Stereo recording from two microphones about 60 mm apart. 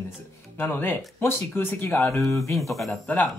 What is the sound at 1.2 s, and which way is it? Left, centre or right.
Speech, left.